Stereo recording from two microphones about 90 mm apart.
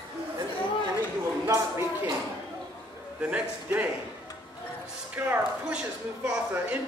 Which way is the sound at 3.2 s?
15° right (ahead or behind).